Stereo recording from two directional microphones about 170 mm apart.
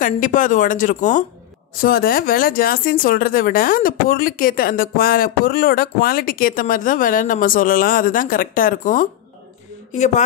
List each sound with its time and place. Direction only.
0.0 s a woman's voice: 50° left (ahead or behind)
1.8 s a woman's voice: 60° left (ahead or behind); by 10.2 s 45° left (ahead or behind)